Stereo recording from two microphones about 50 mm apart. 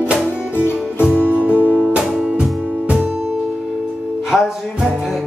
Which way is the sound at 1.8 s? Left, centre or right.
Centre.